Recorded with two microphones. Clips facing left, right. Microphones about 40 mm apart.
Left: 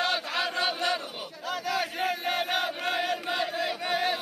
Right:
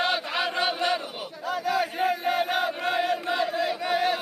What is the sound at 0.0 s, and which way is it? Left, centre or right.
Chant, centre.